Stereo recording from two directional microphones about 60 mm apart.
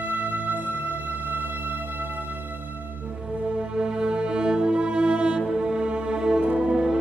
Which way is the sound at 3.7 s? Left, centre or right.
Centre.